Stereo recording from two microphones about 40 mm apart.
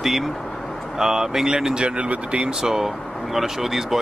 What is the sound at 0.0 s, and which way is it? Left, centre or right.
Vehicle, centre.